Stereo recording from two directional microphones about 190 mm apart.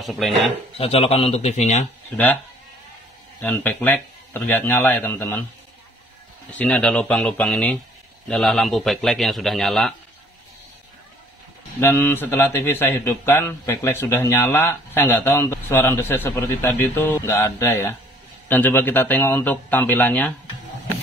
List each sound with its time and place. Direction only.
0.0 s a man's voice: centre (ahead or behind)
0.7 s a man's voice: 30° left (ahead or behind)
2.0 s speech: 10° left (ahead or behind)
3.4 s a man's voice: 10° left (ahead or behind)
6.6 s a man's voice: 5° left (ahead or behind)
11.8 s a man's voice: 10° left (ahead or behind)